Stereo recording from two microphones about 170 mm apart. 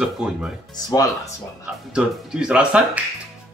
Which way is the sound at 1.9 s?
5° right (ahead or behind).